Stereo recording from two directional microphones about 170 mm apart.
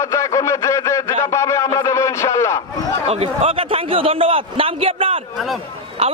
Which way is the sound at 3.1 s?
35° right (ahead or behind).